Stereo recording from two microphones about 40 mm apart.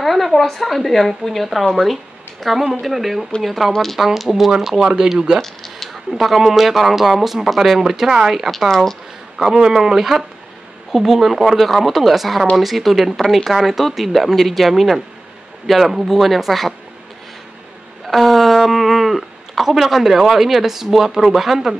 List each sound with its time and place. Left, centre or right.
0.0 s speech: centre
5.4 s a sound: centre
6.0 s speech: centre
8.5 s speech: centre
9.6 s speech: centre
18.0 s speech: centre